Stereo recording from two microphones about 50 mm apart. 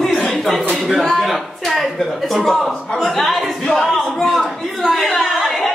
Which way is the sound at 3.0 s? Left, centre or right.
Centre.